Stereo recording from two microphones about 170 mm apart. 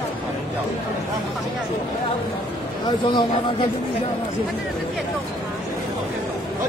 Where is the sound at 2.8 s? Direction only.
25° left (ahead or behind).